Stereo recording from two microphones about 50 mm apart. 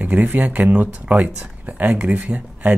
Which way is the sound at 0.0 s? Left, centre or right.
Right.